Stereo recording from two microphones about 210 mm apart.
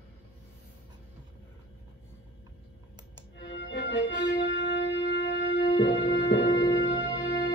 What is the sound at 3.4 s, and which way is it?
Music, 55° left (ahead or behind).